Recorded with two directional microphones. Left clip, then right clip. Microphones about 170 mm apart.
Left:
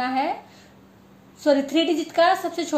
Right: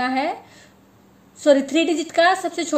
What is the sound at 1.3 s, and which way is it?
A woman's voice, 50° right (ahead or behind).